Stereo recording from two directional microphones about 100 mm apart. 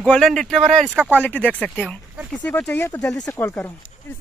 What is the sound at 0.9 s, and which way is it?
Speech, 15° right (ahead or behind).